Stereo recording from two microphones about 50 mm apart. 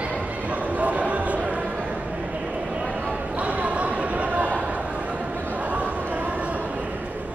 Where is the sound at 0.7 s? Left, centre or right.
Right.